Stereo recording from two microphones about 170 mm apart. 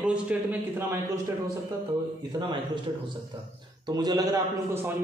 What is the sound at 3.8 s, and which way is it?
A man's voice, 25° right (ahead or behind).